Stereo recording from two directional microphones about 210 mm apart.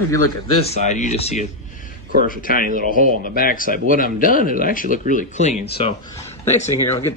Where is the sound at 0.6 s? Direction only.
30° left (ahead or behind).